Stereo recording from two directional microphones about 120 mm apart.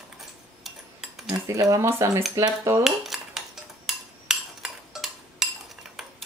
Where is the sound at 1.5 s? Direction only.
30° right (ahead or behind).